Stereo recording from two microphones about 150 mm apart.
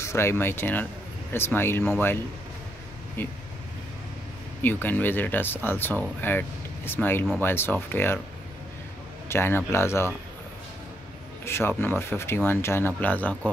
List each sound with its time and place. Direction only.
0.0 s speech: 15° left (ahead or behind)
3.2 s speech: 15° left (ahead or behind)
4.6 s speech: 15° left (ahead or behind)
9.3 s speech: 15° left (ahead or behind)
11.4 s speech: 15° left (ahead or behind)